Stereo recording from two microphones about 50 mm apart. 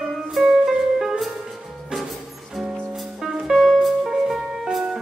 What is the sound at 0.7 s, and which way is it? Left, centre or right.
Music, centre.